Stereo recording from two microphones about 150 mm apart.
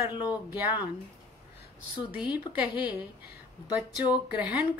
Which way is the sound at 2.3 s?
10° right (ahead or behind).